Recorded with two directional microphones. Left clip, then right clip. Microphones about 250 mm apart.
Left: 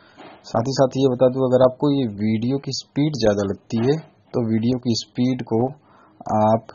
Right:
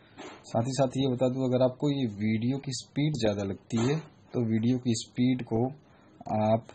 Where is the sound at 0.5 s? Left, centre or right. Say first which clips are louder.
Left 9 dB; left.